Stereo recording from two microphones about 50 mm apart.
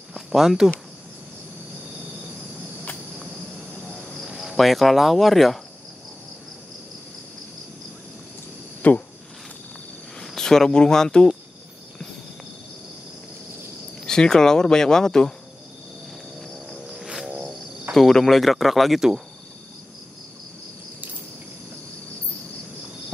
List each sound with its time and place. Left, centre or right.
0.1 s cricket: centre
4.3 s cricket: centre
8.8 s speech: left
10.2 s speech: centre
14.0 s speech: centre
16.8 s cricket: centre
17.9 s speech: centre